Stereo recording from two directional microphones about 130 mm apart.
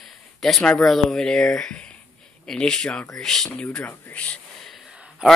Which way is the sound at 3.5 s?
10° left (ahead or behind).